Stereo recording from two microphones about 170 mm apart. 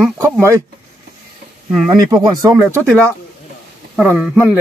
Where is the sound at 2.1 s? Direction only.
20° right (ahead or behind).